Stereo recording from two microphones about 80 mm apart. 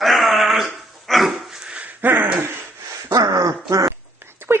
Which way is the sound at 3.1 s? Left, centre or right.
Right.